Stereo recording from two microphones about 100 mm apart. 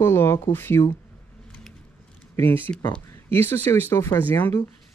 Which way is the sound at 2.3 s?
20° left (ahead or behind).